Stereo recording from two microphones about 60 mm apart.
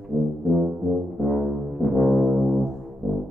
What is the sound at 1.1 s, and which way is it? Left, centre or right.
Music, centre.